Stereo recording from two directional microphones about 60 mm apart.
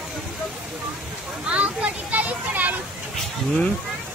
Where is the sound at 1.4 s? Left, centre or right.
Right.